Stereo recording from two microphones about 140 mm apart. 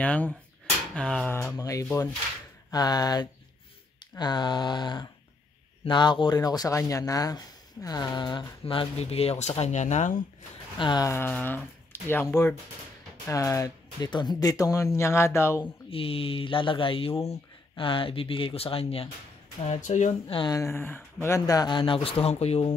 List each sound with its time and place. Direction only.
0.0 s speech: 10° left (ahead or behind)
1.3 s speech: 20° left (ahead or behind); by 10.1 s 55° left (ahead or behind)
10.8 s speech: 35° left (ahead or behind)
11.1 s speech: 15° left (ahead or behind)
15.9 s speech: 40° left (ahead or behind)
19.6 s speech: 55° left (ahead or behind)
20.3 s speech: 25° left (ahead or behind); by 22.7 s 50° left (ahead or behind)